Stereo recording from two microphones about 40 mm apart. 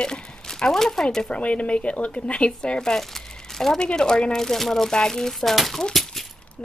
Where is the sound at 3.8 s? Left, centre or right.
Left.